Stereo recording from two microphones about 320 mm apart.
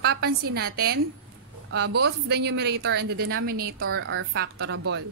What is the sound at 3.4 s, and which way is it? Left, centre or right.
Speech, right.